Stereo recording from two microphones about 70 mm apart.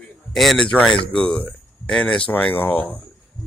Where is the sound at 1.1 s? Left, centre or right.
Centre.